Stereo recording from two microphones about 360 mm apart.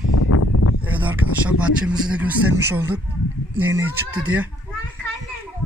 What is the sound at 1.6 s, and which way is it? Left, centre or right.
Speech, centre.